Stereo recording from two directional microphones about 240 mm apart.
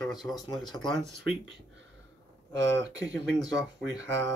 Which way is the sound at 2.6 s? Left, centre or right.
Centre.